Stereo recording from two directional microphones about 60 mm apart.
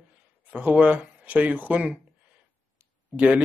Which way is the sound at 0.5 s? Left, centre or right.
Right.